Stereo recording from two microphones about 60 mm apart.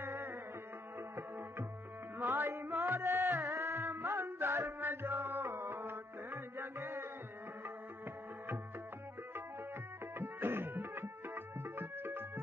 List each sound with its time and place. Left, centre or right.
0.0 s music: right
2.1 s music: right
10.1 s music: right